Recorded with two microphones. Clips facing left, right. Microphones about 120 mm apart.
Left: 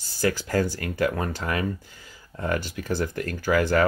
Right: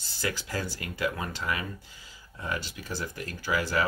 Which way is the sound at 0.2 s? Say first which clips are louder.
Left 9 dB; 45° left (ahead or behind).